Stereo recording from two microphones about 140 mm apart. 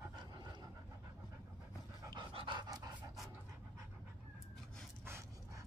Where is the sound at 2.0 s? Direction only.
30° right (ahead or behind).